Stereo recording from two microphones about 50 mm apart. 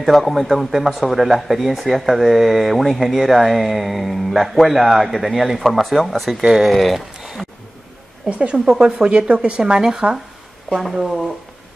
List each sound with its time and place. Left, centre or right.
0.0 s speech: centre
7.2 s a sound: centre
8.3 s a woman's voice: right
10.7 s speech: centre